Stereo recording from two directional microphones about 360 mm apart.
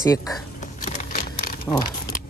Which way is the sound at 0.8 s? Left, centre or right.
Left.